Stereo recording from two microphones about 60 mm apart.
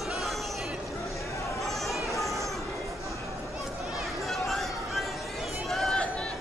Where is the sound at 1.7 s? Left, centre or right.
Centre.